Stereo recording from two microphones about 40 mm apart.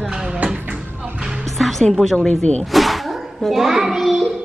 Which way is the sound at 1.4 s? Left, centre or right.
Centre.